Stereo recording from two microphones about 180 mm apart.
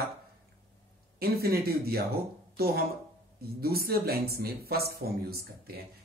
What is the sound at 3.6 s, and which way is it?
Speech, 60° right (ahead or behind).